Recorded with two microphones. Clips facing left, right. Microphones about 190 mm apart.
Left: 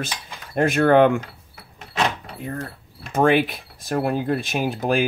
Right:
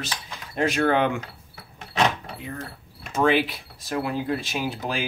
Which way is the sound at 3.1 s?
55° left (ahead or behind).